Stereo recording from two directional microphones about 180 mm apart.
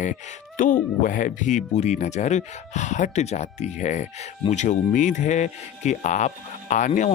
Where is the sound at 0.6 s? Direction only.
50° left (ahead or behind).